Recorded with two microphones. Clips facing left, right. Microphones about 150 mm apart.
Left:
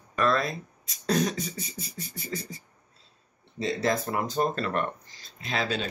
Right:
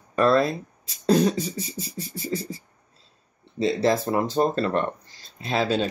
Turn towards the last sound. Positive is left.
turn(degrees=-35)  # may be behind; listen again after turning